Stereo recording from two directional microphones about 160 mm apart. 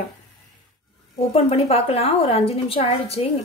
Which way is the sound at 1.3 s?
40° left (ahead or behind).